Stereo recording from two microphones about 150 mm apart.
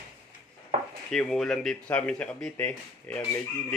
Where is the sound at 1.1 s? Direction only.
5° left (ahead or behind).